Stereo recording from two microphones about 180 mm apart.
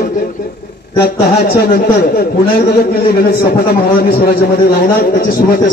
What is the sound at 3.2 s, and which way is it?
A man's voice, 60° left (ahead or behind).